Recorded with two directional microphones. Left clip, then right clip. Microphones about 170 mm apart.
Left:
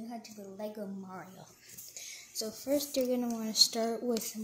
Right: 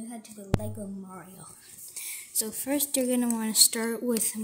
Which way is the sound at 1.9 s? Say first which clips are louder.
Right 5 dB; 30° right (ahead or behind).